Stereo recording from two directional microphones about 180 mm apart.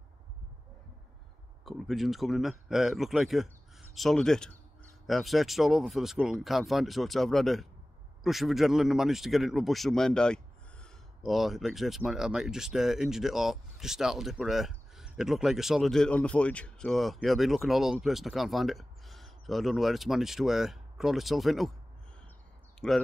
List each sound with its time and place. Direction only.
1.6 s speech: centre (ahead or behind)
22.8 s speech: 5° left (ahead or behind)